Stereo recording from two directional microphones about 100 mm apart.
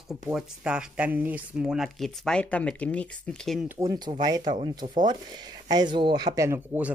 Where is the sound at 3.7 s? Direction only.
40° right (ahead or behind).